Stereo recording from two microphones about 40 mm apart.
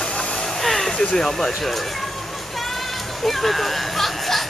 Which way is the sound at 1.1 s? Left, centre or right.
Centre.